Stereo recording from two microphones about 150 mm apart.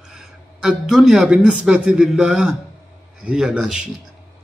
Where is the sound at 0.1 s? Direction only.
5° right (ahead or behind).